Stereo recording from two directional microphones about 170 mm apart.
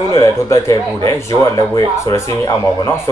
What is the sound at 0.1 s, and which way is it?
A man's voice, 15° left (ahead or behind).